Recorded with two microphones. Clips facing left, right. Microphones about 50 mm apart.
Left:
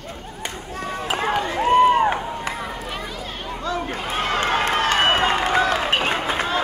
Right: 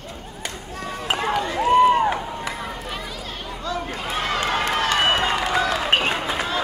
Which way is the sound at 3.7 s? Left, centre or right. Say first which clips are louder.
Left 1 dB; left.